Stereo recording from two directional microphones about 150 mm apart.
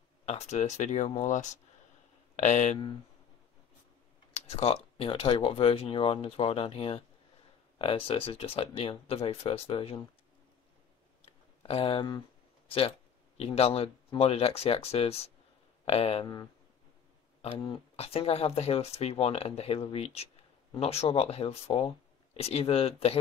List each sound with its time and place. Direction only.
0.2 s speech: 45° left (ahead or behind)
4.3 s speech: 45° left (ahead or behind)
11.6 s speech: 40° left (ahead or behind)
17.4 s speech: 40° left (ahead or behind)